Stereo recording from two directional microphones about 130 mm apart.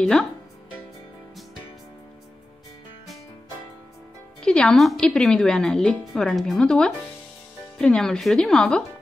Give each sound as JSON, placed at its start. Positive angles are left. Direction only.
{"t": 0.0, "sound": "a woman's voice", "side_deg": 5}
{"t": 4.4, "sound": "a woman's voice", "side_deg": 5}